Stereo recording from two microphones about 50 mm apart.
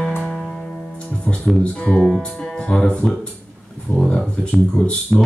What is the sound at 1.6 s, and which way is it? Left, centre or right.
Speech, left.